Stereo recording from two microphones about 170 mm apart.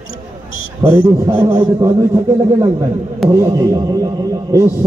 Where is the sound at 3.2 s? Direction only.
20° right (ahead or behind).